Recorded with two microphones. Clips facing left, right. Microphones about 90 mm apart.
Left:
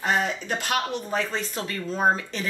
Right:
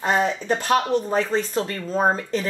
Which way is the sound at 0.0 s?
35° right (ahead or behind).